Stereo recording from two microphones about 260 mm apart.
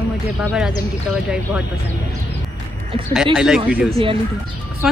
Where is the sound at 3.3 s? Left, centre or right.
Centre.